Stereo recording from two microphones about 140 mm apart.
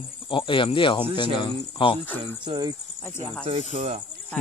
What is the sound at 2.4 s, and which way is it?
Speech, 30° right (ahead or behind).